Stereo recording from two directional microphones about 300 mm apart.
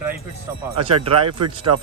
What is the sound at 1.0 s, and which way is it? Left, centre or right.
Speech, centre.